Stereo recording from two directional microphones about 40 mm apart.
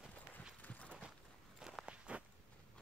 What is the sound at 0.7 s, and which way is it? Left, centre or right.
Clip-clop, left.